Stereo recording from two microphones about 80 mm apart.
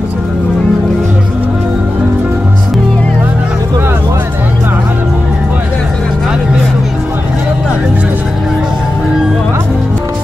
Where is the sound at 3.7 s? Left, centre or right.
Right.